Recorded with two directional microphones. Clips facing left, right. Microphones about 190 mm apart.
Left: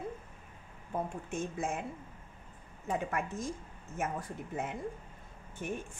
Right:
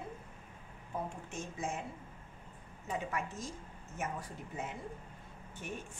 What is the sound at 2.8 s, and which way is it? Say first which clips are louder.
A woman's voice: left 4 dB; 50° left (ahead or behind).